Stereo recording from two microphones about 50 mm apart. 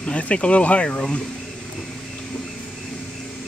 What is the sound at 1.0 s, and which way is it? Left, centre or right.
Speech, centre.